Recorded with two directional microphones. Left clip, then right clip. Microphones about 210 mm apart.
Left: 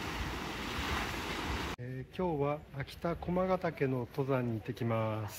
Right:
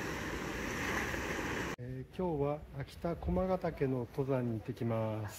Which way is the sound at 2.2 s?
10° left (ahead or behind).